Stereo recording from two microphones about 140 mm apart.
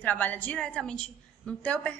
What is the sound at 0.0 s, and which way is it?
A woman's voice, 10° left (ahead or behind).